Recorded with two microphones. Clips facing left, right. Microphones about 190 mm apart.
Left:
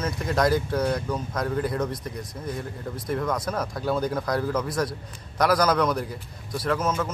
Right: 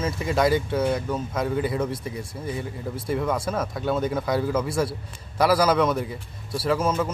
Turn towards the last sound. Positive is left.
turn(degrees=-5)  # may be behind; listen again after turning